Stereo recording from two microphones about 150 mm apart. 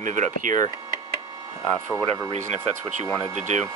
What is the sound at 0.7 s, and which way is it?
Speech, 20° right (ahead or behind).